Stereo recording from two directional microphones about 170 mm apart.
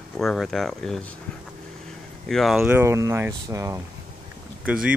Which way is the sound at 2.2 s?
Centre (ahead or behind).